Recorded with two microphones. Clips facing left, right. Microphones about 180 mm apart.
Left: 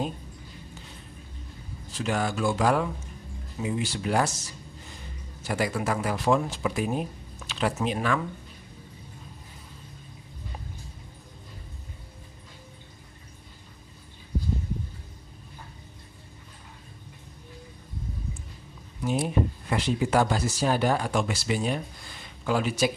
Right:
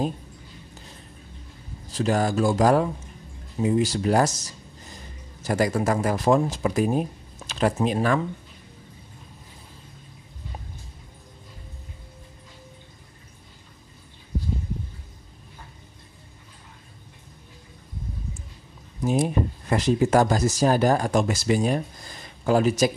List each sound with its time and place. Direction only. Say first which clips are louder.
1.9 s speech: right 5 dB; 40° right (ahead or behind)
19.0 s speech: right 3 dB; 45° right (ahead or behind)